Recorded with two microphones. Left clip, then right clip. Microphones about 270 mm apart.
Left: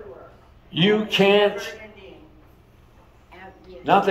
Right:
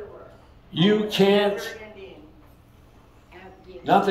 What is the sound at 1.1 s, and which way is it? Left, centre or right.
Speech, centre.